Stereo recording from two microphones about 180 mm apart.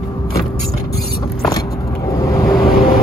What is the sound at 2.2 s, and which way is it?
Vehicle, 20° left (ahead or behind).